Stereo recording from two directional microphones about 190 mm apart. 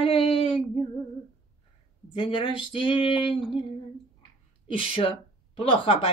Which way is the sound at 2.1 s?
25° left (ahead or behind).